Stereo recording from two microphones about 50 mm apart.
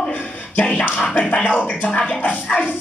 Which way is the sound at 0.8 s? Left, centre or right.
Left.